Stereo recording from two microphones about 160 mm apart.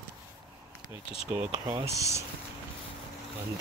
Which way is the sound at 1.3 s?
15° right (ahead or behind).